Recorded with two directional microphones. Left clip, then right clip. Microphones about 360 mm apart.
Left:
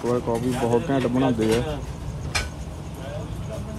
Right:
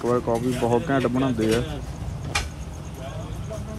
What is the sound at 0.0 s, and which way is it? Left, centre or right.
Speech, centre.